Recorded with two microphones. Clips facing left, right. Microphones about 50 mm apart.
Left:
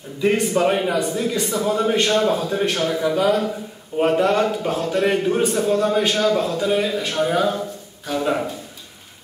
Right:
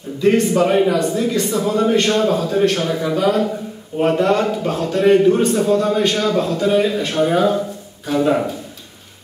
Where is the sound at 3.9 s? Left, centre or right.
Centre.